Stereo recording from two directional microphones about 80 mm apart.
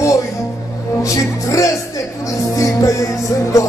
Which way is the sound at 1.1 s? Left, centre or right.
Left.